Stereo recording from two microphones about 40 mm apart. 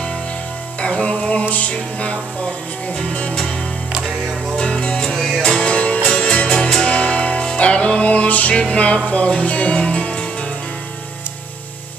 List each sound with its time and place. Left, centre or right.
0.7 s music: left
1.4 s music: left
4.6 s music: left
5.6 s music: left
7.0 s music: left